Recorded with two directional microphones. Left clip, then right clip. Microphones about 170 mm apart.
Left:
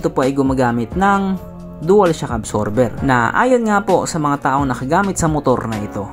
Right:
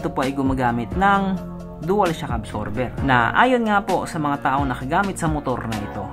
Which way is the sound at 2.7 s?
20° left (ahead or behind).